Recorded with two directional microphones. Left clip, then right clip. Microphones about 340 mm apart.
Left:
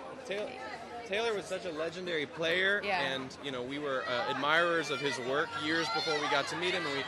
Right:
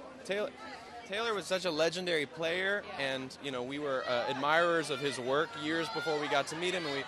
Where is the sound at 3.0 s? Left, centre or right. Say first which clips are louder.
Left 1 dB; right.